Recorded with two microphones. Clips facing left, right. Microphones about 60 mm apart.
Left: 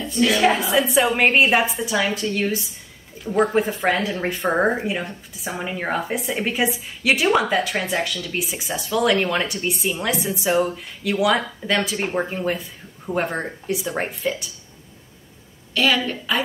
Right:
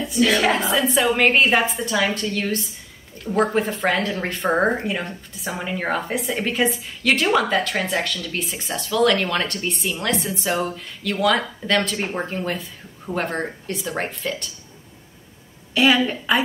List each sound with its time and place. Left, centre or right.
0.1 s a woman's voice: centre
15.7 s a woman's voice: centre